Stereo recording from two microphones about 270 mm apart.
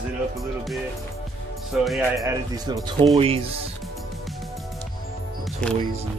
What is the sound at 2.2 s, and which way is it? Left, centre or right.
Speech, centre.